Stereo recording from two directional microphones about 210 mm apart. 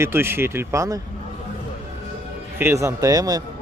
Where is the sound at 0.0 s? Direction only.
10° right (ahead or behind).